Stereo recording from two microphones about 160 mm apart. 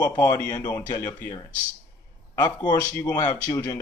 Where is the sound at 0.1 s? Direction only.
15° left (ahead or behind).